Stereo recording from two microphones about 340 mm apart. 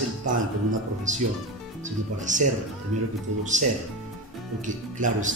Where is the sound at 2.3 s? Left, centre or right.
Right.